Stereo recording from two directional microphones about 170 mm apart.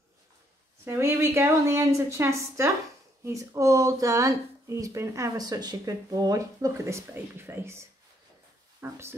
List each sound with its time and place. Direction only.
0.8 s a woman's voice: 15° right (ahead or behind)
8.8 s a woman's voice: 15° right (ahead or behind)